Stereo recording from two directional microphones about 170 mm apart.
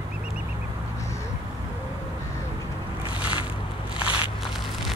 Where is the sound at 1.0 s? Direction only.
20° left (ahead or behind).